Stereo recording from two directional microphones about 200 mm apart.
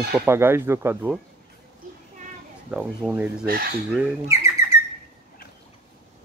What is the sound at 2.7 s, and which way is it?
Speech, 5° right (ahead or behind).